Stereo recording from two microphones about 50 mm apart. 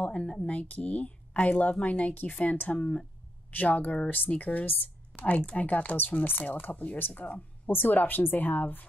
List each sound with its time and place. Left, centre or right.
0.0 s speech: left